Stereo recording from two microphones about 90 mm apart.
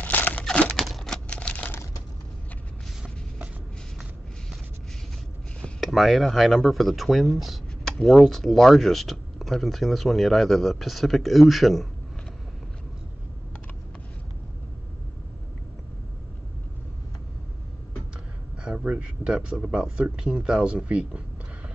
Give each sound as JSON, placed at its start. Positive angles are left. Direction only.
{"t": 0.0, "sound": "crumpling", "side_deg": 20}
{"t": 0.7, "sound": "a sound", "side_deg": 0}
{"t": 5.6, "sound": "speech", "side_deg": 5}
{"t": 18.6, "sound": "speech", "side_deg": -10}